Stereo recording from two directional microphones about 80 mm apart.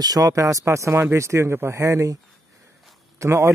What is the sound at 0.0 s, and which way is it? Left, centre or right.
Speech, right.